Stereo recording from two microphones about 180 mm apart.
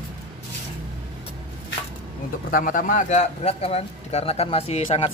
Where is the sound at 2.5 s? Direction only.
50° left (ahead or behind).